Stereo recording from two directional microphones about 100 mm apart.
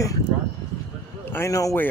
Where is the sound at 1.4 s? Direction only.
35° left (ahead or behind).